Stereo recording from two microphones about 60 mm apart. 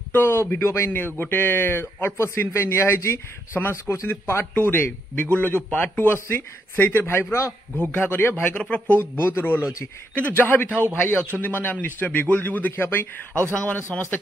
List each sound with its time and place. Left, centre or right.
0.1 s a sound: left
0.7 s speech: left
1.2 s speech: left
4.6 s speech: left
6.2 s speech: left
7.9 s speech: left
8.5 s speech: left
9.1 s speech: left
13.3 s speech: left